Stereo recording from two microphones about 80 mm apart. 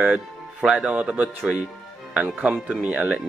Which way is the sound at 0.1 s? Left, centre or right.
Centre.